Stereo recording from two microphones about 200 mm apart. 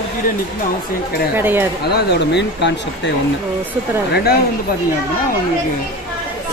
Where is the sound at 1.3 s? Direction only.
10° right (ahead or behind).